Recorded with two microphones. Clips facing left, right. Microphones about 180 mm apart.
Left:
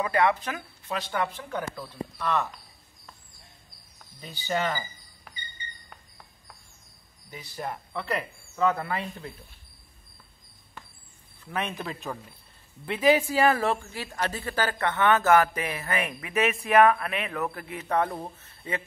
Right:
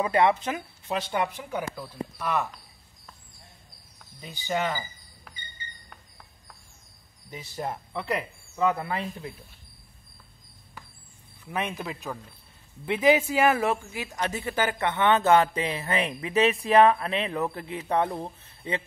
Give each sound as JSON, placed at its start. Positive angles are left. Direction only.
{"t": 0.0, "sound": "speech", "side_deg": -25}
{"t": 4.2, "sound": "speech", "side_deg": -10}
{"t": 7.2, "sound": "speech", "side_deg": -25}
{"t": 11.4, "sound": "speech", "side_deg": -15}
{"t": 12.1, "sound": "speech", "side_deg": 0}
{"t": 12.8, "sound": "speech", "side_deg": -20}
{"t": 18.1, "sound": "speech", "side_deg": -10}